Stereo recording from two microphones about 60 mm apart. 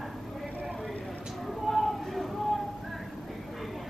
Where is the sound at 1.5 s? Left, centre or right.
Centre.